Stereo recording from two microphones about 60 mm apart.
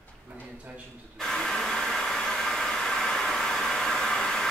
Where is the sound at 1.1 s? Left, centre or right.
Centre.